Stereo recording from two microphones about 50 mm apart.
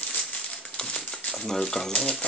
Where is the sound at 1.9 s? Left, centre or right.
Centre.